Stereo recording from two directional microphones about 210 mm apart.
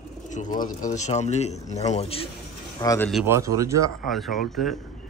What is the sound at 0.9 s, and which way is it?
Speech, 35° left (ahead or behind).